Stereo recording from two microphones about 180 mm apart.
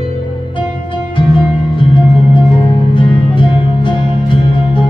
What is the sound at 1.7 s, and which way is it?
Music, 25° left (ahead or behind).